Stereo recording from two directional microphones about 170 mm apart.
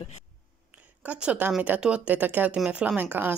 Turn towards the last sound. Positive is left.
turn(degrees=-10)  # may be behind; listen again after turning